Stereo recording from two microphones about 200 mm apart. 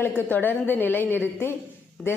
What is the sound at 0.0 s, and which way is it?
A woman's voice, 10° left (ahead or behind).